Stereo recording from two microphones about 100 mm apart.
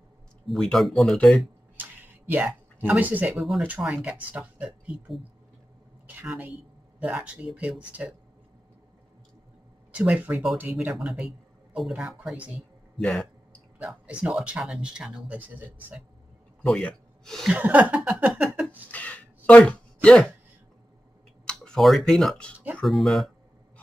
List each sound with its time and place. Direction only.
0.5 s speech: 5° left (ahead or behind)
1.8 s a sound: 20° right (ahead or behind)
3.3 s speech: centre (ahead or behind)
3.6 s speech: 15° right (ahead or behind)
9.9 s speech: 15° right (ahead or behind)
13.0 s a sound: 10° left (ahead or behind)
13.7 s speech: 10° right (ahead or behind)
16.6 s speech: 5° left (ahead or behind)
17.5 s speech: 15° right (ahead or behind)
18.9 s a sound: 15° left (ahead or behind)
21.5 s speech: 5° left (ahead or behind)